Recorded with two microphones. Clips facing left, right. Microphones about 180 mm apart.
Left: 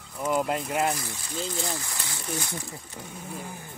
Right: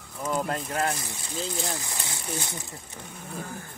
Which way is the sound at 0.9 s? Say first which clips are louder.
Even; 20° right (ahead or behind).